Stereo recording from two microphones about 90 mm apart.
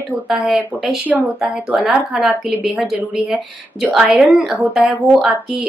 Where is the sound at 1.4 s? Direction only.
10° right (ahead or behind).